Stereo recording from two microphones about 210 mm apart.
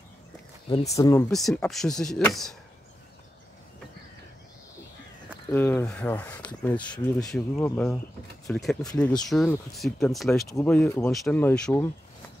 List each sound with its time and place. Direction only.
0.7 s speech: 20° left (ahead or behind)
1.3 s speech: centre (ahead or behind)
5.5 s speech: 10° left (ahead or behind)